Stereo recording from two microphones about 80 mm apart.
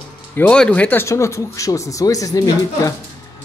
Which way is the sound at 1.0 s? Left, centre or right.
Left.